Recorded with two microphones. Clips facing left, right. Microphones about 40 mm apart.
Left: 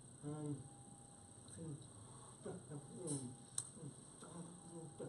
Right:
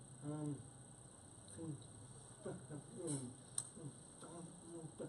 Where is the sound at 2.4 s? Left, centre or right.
Centre.